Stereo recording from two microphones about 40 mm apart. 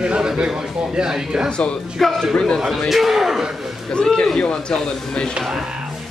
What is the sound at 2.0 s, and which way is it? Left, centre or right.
Speech, centre.